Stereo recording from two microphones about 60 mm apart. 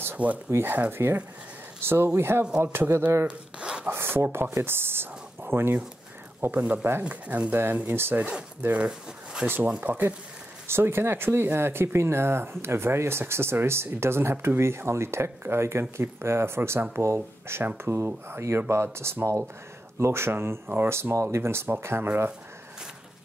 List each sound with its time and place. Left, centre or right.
0.5 s speech: right
3.3 s zipper: centre
3.9 s speech: right
7.0 s speech: right
7.5 s speech: right
8.2 s speech: centre
9.8 s speech: right
10.7 s speech: right